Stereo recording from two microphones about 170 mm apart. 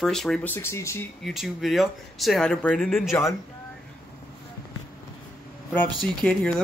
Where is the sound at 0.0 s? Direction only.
5° left (ahead or behind).